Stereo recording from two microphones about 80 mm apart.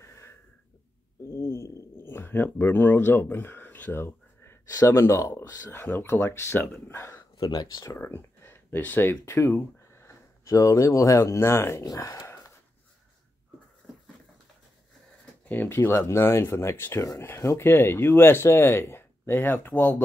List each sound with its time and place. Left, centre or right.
0.0 s a sound: left
4.7 s speech: left
5.7 s speech: left
7.3 s speech: left
8.0 s a sound: left
8.8 s speech: left
9.2 s speech: left
11.8 s speech: left
12.2 s a sound: left
13.8 s dog: centre
15.4 s speech: left